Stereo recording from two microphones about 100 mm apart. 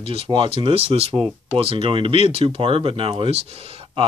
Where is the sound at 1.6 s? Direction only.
65° right (ahead or behind).